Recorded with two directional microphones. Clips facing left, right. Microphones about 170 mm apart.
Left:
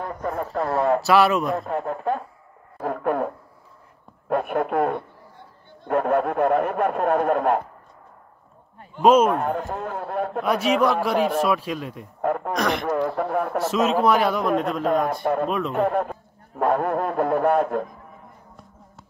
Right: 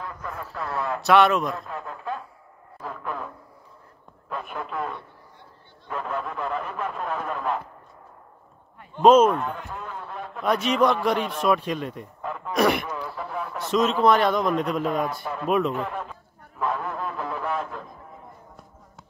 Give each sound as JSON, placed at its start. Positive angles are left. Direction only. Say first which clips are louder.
{"t": 0.0, "sound": "a man's voice", "louder": "left 8 dB", "side_deg": 35}
{"t": 1.0, "sound": "speech", "louder": "right 4 dB", "side_deg": 5}
{"t": 1.6, "sound": "speech", "louder": "left 9 dB", "side_deg": 30}
{"t": 2.8, "sound": "speech", "louder": "left 10 dB", "side_deg": 55}
{"t": 9.0, "sound": "a man's voice", "louder": "right 1 dB", "side_deg": 10}
{"t": 9.3, "sound": "speech", "louder": "left 4 dB", "side_deg": 60}
{"t": 9.6, "sound": "speech", "louder": "left 7 dB", "side_deg": 45}
{"t": 10.4, "sound": "a man's voice", "louder": "even", "side_deg": 10}
{"t": 12.2, "sound": "speech", "louder": "left 10 dB", "side_deg": 55}
{"t": 12.5, "sound": "speech", "louder": "right 2 dB", "side_deg": -10}
{"t": 12.8, "sound": "speech", "louder": "left 10 dB", "side_deg": 55}
{"t": 13.7, "sound": "a man's voice", "louder": "right 1 dB", "side_deg": 5}
{"t": 14.9, "sound": "a man's voice", "louder": "left 5 dB", "side_deg": 45}